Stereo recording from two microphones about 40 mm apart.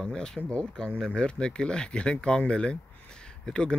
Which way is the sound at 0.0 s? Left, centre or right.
Centre.